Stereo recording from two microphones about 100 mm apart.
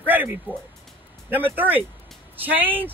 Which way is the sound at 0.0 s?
20° right (ahead or behind).